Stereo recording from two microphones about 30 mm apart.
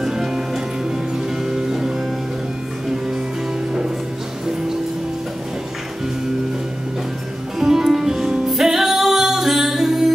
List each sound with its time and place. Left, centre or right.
0.0 s music: centre
7.6 s music: centre